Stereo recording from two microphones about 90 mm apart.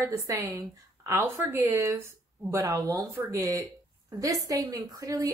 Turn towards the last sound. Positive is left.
turn(degrees=-40)  # may be behind; listen again after turning